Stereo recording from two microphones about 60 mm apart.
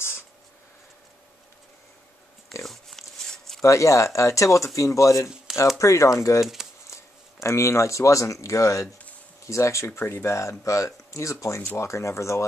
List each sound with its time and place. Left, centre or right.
2.6 s a sound: centre
3.6 s speech: left
6.4 s speech: centre
6.9 s speech: left
9.9 s speech: left